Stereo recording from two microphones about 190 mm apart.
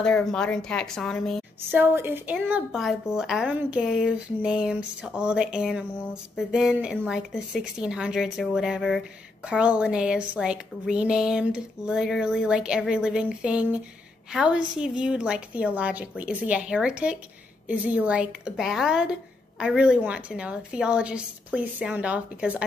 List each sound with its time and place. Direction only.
0.0 s a woman's voice: 5° left (ahead or behind)
1.7 s a woman's voice: 10° right (ahead or behind)